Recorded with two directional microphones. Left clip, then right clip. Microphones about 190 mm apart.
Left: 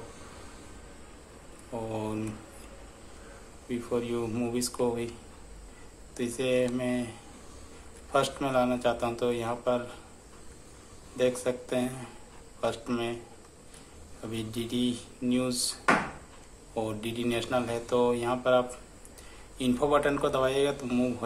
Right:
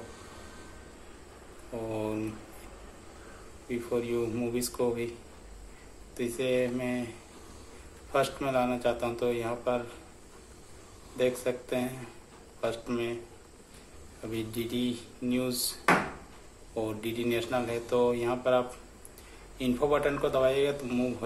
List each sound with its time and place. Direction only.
1.9 s a sound: 15° left (ahead or behind)
3.6 s speech: 15° left (ahead or behind)
6.1 s speech: 15° left (ahead or behind)
8.1 s speech: 15° left (ahead or behind)
11.1 s speech: 15° left (ahead or behind)
14.3 s speech: 15° left (ahead or behind)
16.7 s speech: 15° left (ahead or behind)